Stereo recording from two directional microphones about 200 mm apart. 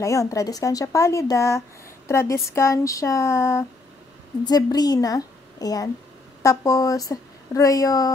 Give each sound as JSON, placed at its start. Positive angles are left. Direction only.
{"t": 0.0, "sound": "a woman's voice", "side_deg": 15}